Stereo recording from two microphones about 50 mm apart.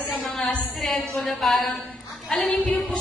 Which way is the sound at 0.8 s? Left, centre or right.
Centre.